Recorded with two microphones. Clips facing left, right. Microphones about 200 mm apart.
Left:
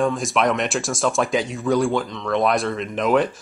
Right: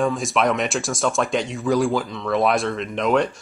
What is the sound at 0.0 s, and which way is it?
A man's voice, centre (ahead or behind).